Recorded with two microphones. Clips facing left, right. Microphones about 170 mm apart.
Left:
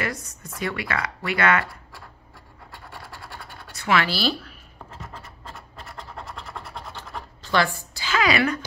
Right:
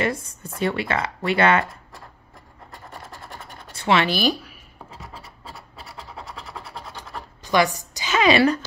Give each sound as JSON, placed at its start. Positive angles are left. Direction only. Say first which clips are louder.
{"t": 0.0, "sound": "speech", "louder": "right 5 dB", "side_deg": -30}
{"t": 3.3, "sound": "scratch", "louder": "right 1 dB", "side_deg": -25}
{"t": 4.9, "sound": "scratch", "louder": "left 1 dB", "side_deg": -5}
{"t": 7.4, "sound": "a woman's voice", "louder": "right 3 dB", "side_deg": -15}